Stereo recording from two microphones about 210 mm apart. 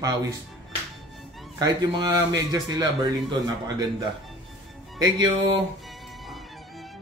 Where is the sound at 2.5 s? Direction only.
20° right (ahead or behind).